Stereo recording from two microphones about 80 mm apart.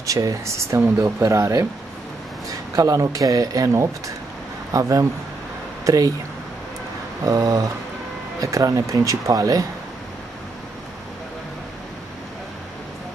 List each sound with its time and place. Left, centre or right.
0.0 s speech: right
2.7 s speech: right
7.2 s speech: right